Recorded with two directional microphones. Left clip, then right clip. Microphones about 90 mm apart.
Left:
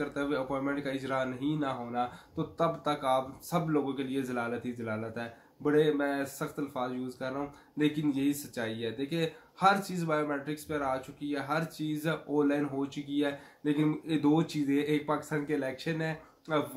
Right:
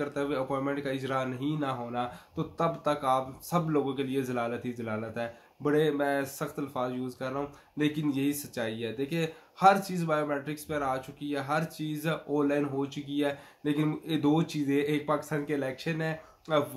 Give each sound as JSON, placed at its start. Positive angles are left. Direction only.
{"t": 0.0, "sound": "speech", "side_deg": -25}